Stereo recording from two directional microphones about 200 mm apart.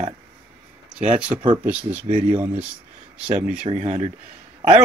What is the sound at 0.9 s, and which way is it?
Speech, 5° right (ahead or behind).